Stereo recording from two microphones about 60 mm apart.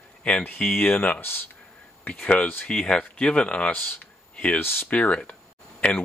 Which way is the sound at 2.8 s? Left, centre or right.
Centre.